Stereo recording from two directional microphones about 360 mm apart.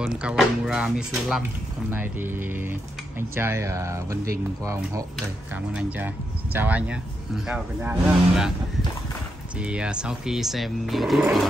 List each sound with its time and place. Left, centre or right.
0.0 s speech: centre
9.6 s speech: centre